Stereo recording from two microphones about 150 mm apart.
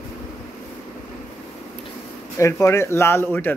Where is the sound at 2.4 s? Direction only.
20° left (ahead or behind).